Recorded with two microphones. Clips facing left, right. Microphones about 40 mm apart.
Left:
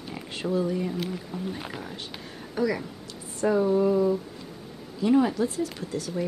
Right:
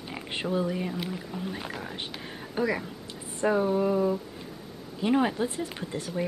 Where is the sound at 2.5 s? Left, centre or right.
Right.